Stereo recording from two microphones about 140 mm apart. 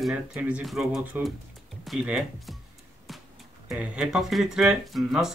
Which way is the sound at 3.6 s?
10° right (ahead or behind).